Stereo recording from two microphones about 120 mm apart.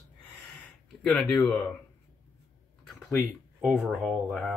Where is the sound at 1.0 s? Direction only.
10° left (ahead or behind).